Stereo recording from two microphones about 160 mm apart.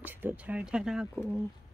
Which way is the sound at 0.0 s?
10° right (ahead or behind).